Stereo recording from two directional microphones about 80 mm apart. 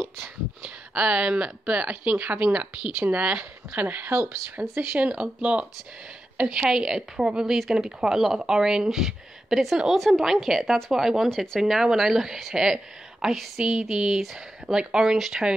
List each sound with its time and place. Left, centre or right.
0.6 s a woman's voice: centre